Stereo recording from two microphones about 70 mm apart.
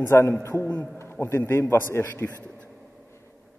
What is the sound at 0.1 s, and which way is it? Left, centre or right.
A man's voice, left.